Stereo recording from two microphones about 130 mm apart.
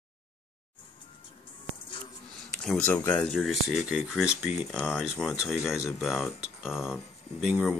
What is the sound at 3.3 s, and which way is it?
Speech, centre (ahead or behind).